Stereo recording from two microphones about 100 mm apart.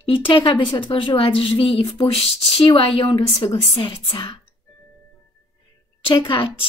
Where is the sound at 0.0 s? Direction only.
55° left (ahead or behind).